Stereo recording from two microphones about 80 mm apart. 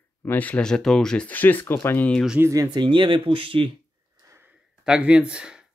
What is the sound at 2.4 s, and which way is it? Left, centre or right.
Speech, right.